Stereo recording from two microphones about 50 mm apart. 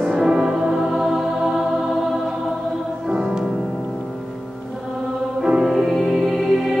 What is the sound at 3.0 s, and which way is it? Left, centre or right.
Music, centre.